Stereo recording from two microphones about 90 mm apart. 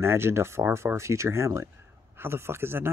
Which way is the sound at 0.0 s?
25° right (ahead or behind).